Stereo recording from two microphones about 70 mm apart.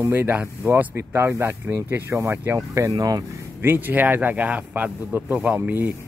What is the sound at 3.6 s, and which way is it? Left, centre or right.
Speech, right.